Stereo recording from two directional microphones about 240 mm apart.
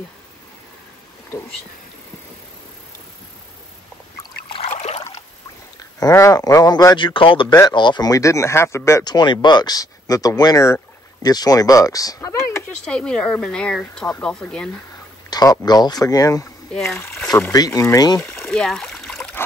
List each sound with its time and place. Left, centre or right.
4.5 s trickle: left
5.8 s speech: centre
15.2 s speech: centre
16.7 s speech: centre